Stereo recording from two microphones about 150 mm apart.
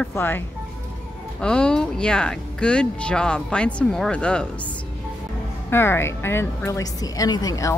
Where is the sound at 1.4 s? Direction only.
5° left (ahead or behind).